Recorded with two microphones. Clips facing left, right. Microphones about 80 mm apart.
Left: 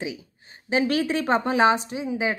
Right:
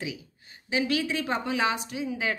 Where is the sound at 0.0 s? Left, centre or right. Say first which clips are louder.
Left 4 dB; left.